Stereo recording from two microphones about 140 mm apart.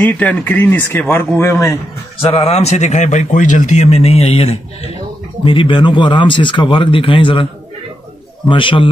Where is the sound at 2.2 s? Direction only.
40° left (ahead or behind).